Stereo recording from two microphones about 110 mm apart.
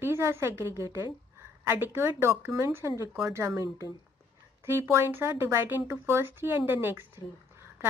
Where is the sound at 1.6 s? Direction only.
20° right (ahead or behind).